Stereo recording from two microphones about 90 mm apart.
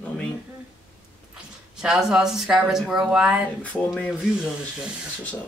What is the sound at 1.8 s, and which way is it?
Speech, 5° right (ahead or behind).